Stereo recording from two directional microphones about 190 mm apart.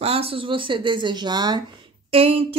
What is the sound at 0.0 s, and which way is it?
Speech, 30° right (ahead or behind).